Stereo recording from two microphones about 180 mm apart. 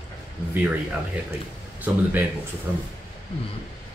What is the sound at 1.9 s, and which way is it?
Speech, 10° right (ahead or behind).